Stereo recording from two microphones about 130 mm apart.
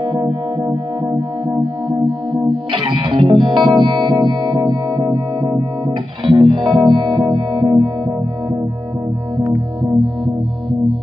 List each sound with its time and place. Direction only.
0.0 s music: 45° right (ahead or behind)
2.7 s music: 40° right (ahead or behind)